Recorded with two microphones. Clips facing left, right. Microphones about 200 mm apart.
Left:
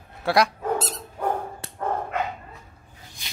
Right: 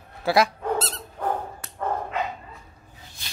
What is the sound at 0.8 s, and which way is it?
Dog, 15° left (ahead or behind).